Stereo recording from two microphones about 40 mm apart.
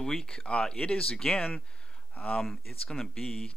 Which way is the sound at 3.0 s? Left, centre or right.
Centre.